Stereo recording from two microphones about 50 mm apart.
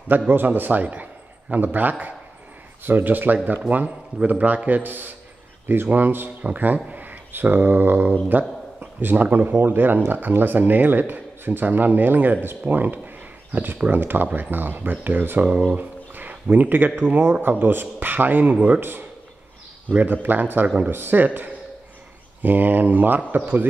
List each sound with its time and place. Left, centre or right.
0.3 s a man's voice: right
18.8 s a man's voice: right